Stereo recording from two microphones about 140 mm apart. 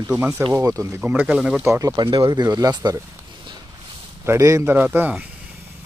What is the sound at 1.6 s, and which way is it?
Speech, 20° right (ahead or behind).